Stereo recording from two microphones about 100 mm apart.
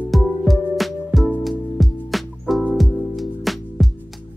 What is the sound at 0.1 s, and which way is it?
Music, centre (ahead or behind).